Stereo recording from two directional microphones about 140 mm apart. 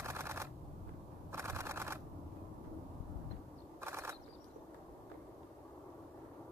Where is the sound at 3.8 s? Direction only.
20° right (ahead or behind).